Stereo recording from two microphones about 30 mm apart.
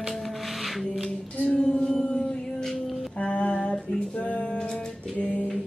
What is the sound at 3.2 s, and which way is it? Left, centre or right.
Music, left.